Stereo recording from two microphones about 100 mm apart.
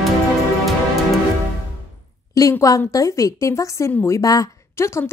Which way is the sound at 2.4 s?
35° left (ahead or behind).